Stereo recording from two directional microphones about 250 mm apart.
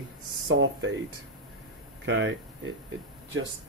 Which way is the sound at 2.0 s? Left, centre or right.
Right.